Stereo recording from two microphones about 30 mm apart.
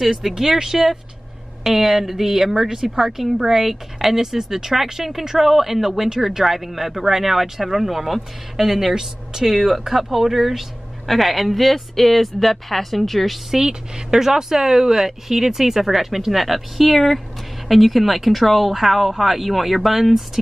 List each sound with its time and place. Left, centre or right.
0.0 s speech: centre
8.9 s speech: centre
13.5 s speech: centre